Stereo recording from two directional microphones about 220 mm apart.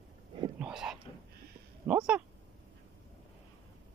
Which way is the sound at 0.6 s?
5° right (ahead or behind).